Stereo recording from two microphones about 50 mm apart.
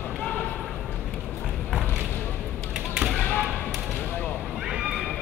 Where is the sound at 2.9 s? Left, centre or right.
Centre.